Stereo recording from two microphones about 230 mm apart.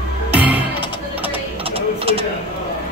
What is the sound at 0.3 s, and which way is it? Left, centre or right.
Music, centre.